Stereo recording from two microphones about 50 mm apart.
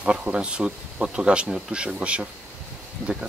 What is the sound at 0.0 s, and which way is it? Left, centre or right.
Speech, right.